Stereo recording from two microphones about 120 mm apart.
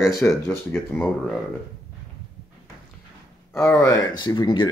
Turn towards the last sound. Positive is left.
turn(degrees=40)  # may be behind; listen again after turning